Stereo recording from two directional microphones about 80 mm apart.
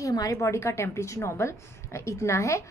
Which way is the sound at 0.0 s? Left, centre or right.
Left.